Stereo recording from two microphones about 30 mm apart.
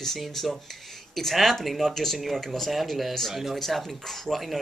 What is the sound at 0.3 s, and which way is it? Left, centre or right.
Speech, centre.